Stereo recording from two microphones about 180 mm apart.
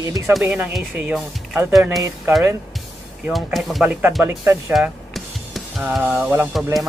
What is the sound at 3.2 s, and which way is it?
Speech, centre (ahead or behind).